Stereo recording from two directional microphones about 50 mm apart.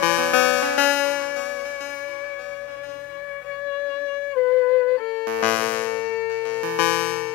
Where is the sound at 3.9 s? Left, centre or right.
Left.